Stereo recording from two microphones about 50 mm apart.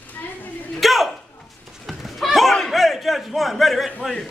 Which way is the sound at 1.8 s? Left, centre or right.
Centre.